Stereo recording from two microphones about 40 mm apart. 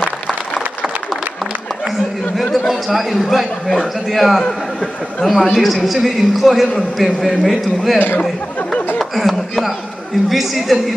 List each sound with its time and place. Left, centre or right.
2.7 s a man's voice: centre
9.1 s a sound: centre
10.3 s a man's voice: centre